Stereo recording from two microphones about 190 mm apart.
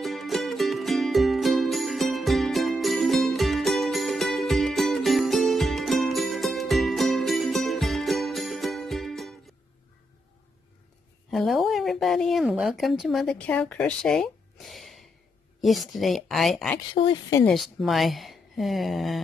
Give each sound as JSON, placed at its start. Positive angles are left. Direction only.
{"t": 0.0, "sound": "music", "side_deg": 0}
{"t": 11.2, "sound": "speech", "side_deg": 0}
{"t": 16.9, "sound": "speech", "side_deg": 20}
{"t": 17.5, "sound": "speech", "side_deg": 0}